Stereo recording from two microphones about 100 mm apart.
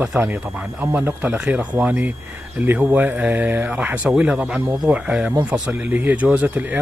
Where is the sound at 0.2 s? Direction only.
15° right (ahead or behind).